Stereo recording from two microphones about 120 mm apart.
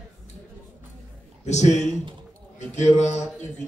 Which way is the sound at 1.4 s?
70° left (ahead or behind).